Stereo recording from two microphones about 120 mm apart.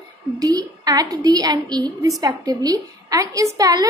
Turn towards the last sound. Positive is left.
turn(degrees=-30)  # may be behind; listen again after turning